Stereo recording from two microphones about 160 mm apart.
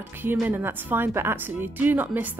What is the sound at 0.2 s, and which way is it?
Speech, 10° right (ahead or behind).